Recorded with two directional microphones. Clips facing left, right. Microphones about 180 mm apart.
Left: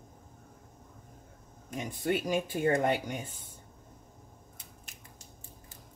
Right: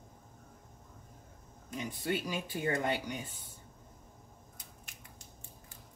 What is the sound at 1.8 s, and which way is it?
Speech, 50° left (ahead or behind).